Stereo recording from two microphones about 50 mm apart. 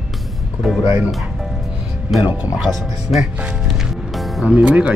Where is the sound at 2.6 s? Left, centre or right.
Centre.